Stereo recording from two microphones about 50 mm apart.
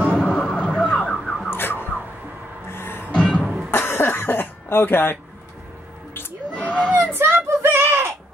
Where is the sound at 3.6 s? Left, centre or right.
Left.